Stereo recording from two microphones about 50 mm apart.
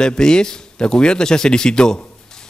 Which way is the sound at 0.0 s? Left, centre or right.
Centre.